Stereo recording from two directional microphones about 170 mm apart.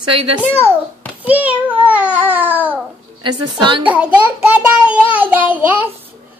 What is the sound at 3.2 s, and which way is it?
Speech, 30° right (ahead or behind).